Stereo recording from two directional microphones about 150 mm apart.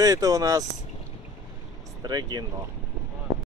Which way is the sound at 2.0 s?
25° right (ahead or behind).